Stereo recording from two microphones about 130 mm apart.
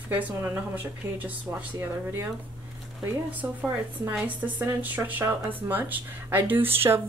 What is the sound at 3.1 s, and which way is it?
Speech, 10° right (ahead or behind).